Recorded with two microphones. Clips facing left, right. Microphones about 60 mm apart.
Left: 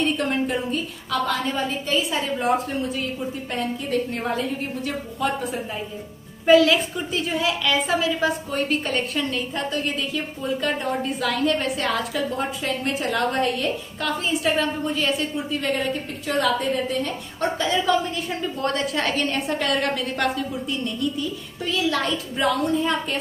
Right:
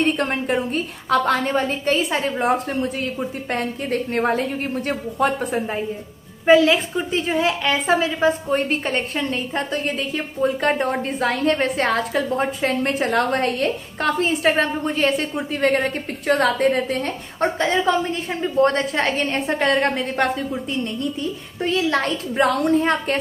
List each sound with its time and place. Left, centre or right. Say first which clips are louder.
0.0 s a woman's voice: right 2 dB; right
3.5 s a woman's voice: right 1 dB; right
6.4 s a woman's voice: right 1 dB; right
17.4 s a woman's voice: right 3 dB; right